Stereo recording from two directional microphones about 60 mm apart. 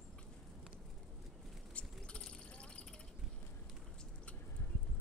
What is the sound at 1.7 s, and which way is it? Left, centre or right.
Vehicle, centre.